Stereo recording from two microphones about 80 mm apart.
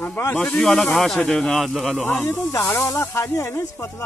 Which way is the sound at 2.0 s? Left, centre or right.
Left.